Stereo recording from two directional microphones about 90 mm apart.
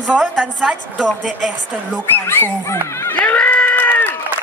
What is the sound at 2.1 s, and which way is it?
Speech, 25° left (ahead or behind).